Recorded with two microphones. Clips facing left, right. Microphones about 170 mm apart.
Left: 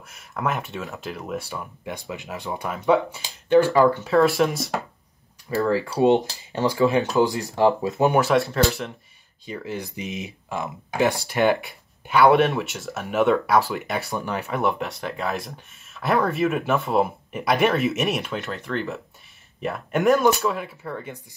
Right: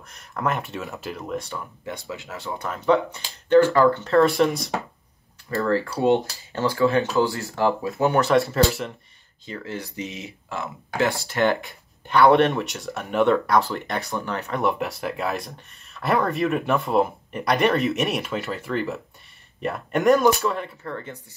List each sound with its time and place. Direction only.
0.1 s speech: centre (ahead or behind); by 8.2 s 20° left (ahead or behind)
8.2 s speech: centre (ahead or behind)
9.5 s speech: 15° left (ahead or behind)
14.6 s speech: centre (ahead or behind)